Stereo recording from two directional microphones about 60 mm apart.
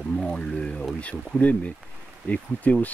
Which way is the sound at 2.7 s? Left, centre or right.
Left.